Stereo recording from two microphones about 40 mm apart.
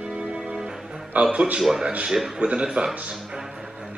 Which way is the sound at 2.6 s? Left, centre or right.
Centre.